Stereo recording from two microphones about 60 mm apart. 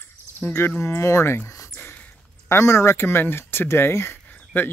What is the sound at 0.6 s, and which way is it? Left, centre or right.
Speech, left.